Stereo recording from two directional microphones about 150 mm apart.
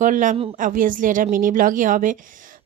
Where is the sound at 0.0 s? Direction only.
60° right (ahead or behind).